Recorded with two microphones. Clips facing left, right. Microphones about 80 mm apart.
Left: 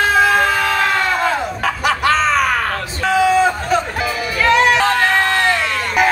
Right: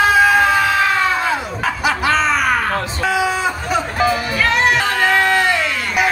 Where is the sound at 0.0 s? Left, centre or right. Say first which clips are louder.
Right 1 dB; centre.